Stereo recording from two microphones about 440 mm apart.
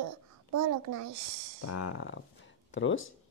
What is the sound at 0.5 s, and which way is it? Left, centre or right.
Speech, right.